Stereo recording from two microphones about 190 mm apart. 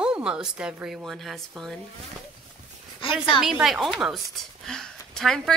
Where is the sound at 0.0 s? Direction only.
5° right (ahead or behind).